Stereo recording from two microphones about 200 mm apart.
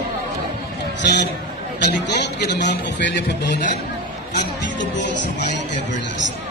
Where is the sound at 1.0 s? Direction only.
55° left (ahead or behind).